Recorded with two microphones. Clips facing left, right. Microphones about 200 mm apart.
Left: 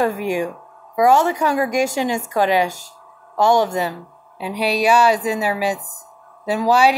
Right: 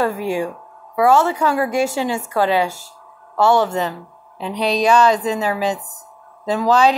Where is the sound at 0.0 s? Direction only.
15° left (ahead or behind).